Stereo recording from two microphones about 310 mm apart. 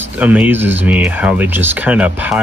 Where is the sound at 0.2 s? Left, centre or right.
Centre.